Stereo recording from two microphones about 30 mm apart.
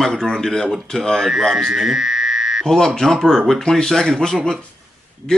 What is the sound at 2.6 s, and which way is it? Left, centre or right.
A man's voice, centre.